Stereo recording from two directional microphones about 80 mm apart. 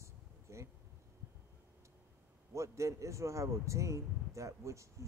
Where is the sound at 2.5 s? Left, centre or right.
Right.